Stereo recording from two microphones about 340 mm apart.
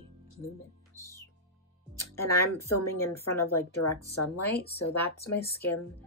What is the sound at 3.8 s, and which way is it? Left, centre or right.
Speech, left.